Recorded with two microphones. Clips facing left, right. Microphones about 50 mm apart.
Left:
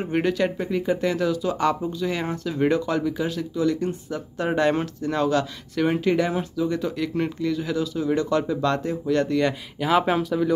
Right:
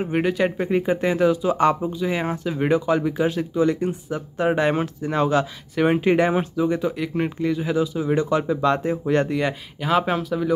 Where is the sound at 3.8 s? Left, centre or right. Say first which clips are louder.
Right 2 dB; centre.